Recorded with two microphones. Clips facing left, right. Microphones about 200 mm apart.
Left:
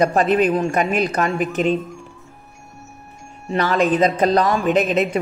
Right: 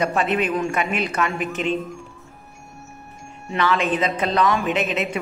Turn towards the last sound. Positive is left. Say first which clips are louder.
# left 6 dB
turn(degrees=40)  # may be behind; listen again after turning